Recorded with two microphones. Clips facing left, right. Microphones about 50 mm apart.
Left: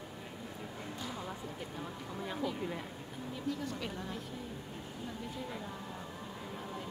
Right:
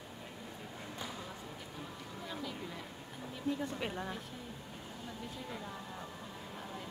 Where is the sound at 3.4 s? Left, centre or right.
Right.